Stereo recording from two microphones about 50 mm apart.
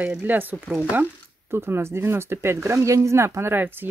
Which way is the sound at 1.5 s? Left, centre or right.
Right.